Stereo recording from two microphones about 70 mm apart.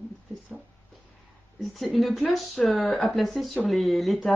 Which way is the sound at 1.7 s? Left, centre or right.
Centre.